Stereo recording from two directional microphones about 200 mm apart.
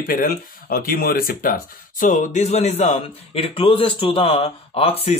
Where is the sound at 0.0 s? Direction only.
45° left (ahead or behind).